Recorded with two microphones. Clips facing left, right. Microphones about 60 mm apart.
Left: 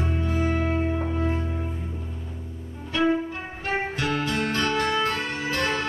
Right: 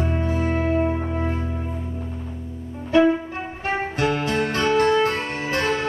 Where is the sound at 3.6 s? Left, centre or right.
Right.